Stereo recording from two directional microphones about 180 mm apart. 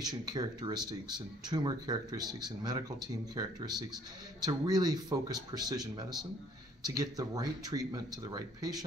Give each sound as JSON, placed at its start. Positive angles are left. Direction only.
{"t": 0.0, "sound": "speech", "side_deg": -20}